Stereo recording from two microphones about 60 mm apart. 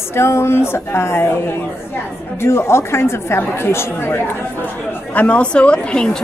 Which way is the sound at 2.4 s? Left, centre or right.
Left.